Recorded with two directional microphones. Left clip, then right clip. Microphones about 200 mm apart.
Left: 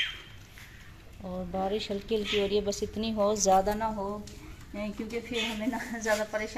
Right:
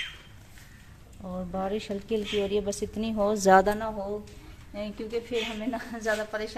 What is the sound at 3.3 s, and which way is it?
Speech, 40° right (ahead or behind).